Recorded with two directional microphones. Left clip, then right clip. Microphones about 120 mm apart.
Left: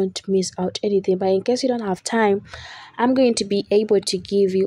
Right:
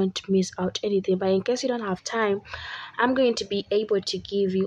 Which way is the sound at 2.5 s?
35° left (ahead or behind).